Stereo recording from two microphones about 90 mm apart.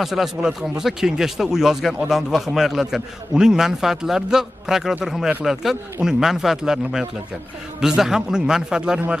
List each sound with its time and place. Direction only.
0.0 s a man's voice: 5° right (ahead or behind)